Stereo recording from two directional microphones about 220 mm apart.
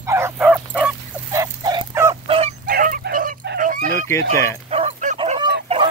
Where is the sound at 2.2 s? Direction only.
25° right (ahead or behind).